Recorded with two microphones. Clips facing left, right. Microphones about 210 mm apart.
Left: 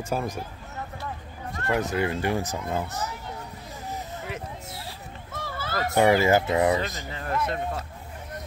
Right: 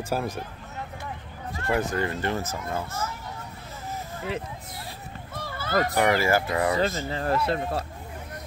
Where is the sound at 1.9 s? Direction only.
10° left (ahead or behind).